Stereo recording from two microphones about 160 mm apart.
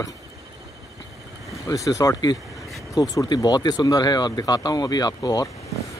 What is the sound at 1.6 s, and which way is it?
Speech, 20° left (ahead or behind).